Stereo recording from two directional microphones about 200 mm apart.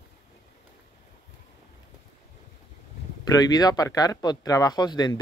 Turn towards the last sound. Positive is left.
turn(degrees=20)  # may be behind; listen again after turning